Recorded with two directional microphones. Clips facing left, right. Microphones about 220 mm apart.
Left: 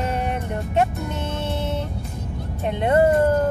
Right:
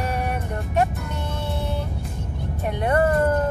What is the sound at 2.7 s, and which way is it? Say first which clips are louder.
Music: left 3 dB; 25° left (ahead or behind).